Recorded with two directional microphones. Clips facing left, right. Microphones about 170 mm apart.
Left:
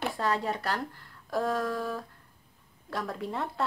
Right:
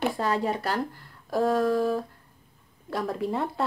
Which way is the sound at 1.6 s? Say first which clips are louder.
Right 8 dB; 25° right (ahead or behind).